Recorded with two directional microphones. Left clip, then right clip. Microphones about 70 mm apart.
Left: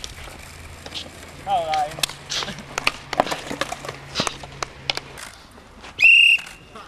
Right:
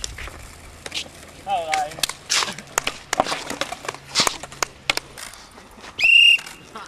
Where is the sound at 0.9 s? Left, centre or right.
Right.